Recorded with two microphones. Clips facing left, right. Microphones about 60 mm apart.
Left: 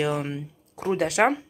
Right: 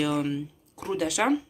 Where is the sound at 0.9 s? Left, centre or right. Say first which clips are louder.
Left 4 dB; left.